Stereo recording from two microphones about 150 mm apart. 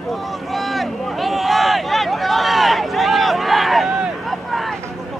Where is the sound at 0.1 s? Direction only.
Centre (ahead or behind).